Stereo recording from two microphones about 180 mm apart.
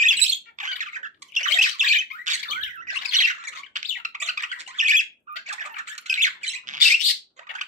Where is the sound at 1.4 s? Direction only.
45° right (ahead or behind).